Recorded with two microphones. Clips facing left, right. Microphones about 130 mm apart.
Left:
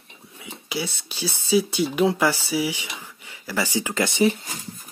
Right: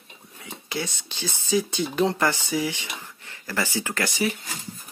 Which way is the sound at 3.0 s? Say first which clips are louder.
Left 1 dB; 10° left (ahead or behind).